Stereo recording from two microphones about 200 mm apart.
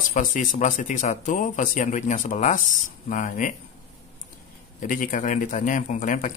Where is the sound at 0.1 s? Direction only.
40° left (ahead or behind).